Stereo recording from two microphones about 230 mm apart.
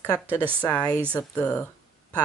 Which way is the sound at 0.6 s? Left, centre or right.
Centre.